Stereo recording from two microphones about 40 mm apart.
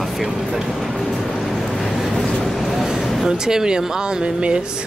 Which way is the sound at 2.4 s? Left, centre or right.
Centre.